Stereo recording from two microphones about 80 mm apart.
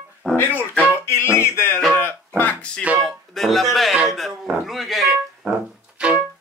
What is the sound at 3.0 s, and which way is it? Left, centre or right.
Music, centre.